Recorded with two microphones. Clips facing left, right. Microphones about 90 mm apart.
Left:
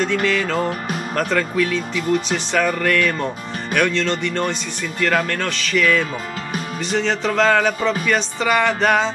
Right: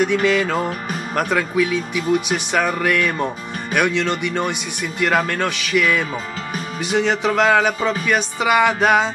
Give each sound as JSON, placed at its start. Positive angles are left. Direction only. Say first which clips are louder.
{"t": 0.0, "sound": "speech", "louder": "right 2 dB", "side_deg": -15}